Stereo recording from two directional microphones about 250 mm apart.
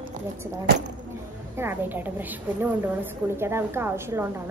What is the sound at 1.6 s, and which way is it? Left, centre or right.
A woman's voice, centre.